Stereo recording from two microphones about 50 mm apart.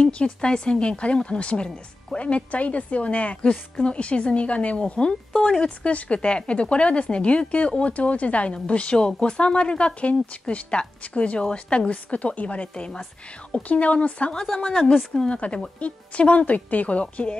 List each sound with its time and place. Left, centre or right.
0.0 s speech: centre
14.3 s a woman's voice: centre
15.1 s speech: left